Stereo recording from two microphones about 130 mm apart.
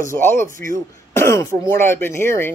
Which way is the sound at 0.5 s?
90° right.